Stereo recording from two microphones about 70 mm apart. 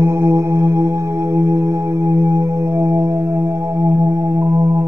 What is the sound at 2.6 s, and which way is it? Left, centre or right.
Music, right.